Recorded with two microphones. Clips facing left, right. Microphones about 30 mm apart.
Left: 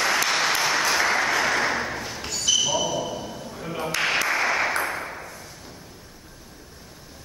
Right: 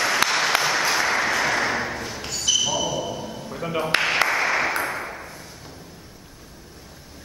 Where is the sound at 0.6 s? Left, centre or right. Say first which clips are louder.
Even; centre.